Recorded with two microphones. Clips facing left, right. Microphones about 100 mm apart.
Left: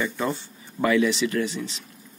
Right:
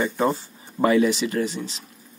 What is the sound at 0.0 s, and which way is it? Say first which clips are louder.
Speech: right 4 dB; 35° right (ahead or behind).